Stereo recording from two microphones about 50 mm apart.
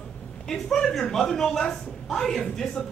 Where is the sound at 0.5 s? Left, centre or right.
Centre.